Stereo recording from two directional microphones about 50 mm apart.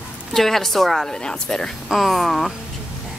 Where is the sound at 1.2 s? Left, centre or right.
Centre.